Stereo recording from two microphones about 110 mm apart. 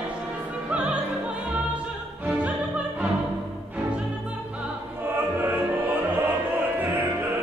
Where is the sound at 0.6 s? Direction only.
10° right (ahead or behind).